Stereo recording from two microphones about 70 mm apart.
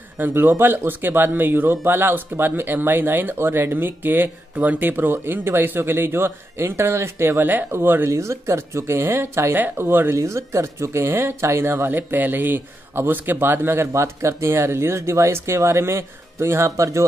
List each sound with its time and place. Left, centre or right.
0.2 s speech: right
10.1 s speech: right